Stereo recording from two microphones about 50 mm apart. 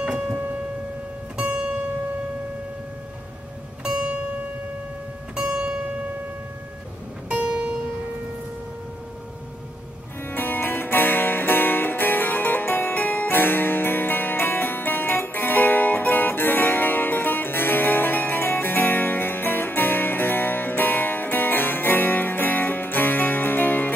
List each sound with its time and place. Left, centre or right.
3.8 s music: right
5.3 s zither: centre
5.6 s music: right
7.2 s music: centre
10.2 s music: left